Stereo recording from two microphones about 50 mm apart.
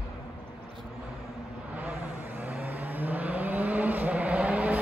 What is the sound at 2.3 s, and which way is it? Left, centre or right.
Vehicle, right.